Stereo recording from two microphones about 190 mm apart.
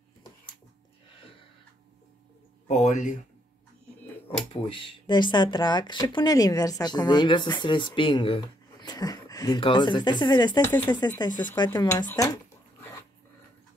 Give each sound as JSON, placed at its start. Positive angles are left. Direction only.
{"t": 2.7, "sound": "speech", "side_deg": 40}
{"t": 4.5, "sound": "speech", "side_deg": 25}